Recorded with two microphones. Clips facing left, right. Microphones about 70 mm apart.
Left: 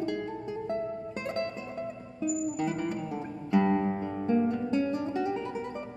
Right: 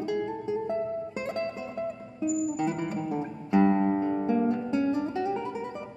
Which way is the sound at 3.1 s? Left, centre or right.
Centre.